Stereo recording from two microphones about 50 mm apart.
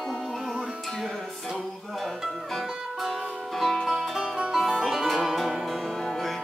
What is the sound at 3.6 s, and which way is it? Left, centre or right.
Music, centre.